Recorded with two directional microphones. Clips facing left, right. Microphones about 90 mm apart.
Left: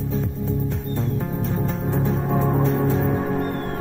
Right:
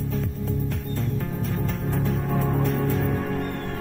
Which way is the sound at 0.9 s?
15° left (ahead or behind).